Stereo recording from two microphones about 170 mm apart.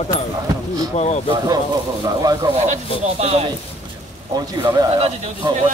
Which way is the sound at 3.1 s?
40° right (ahead or behind).